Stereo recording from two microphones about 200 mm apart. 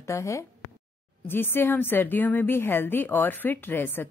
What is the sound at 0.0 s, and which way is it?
A woman's voice, 15° left (ahead or behind).